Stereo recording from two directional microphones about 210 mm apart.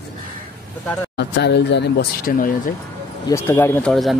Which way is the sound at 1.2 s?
55° left (ahead or behind).